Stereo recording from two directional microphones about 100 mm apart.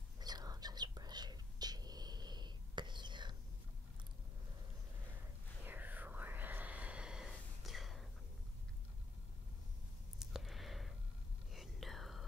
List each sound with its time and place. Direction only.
0.2 s whispering: 40° right (ahead or behind)
5.6 s whispering: 20° right (ahead or behind); by 8.1 s centre (ahead or behind)
10.1 s a sound: centre (ahead or behind)
11.5 s whispering: centre (ahead or behind)